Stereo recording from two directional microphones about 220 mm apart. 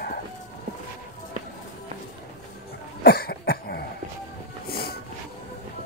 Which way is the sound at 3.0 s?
45° left (ahead or behind).